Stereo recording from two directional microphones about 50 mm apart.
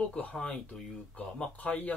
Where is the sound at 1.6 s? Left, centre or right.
Left.